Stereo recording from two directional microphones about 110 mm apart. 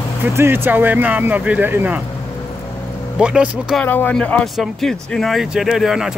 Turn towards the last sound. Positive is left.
turn(degrees=-5)  # may be behind; listen again after turning